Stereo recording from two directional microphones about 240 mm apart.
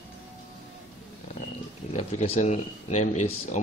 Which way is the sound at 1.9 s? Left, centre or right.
Left.